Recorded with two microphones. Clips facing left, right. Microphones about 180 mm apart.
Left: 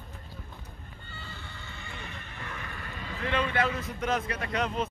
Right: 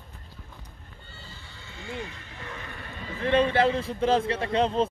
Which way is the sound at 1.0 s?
60° left (ahead or behind).